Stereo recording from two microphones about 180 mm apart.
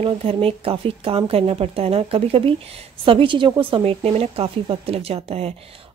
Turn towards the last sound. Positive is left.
turn(degrees=-35)  # may be behind; listen again after turning